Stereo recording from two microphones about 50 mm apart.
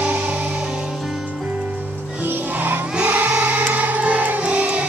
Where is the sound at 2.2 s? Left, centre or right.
Right.